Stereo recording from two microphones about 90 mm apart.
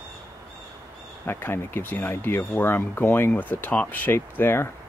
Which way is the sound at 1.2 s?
25° left (ahead or behind).